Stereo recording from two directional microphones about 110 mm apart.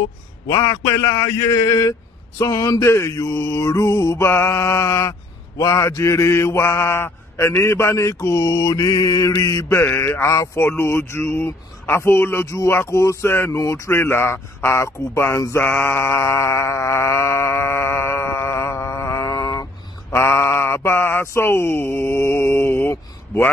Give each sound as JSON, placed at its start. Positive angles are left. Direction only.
{"t": 0.5, "sound": "speech", "side_deg": 30}
{"t": 2.8, "sound": "speech", "side_deg": 25}